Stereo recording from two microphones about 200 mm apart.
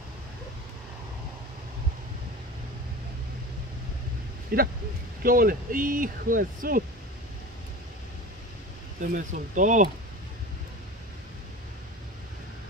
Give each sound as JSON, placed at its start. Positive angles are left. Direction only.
{"t": 4.5, "sound": "speech", "side_deg": -50}
{"t": 9.0, "sound": "speech", "side_deg": -40}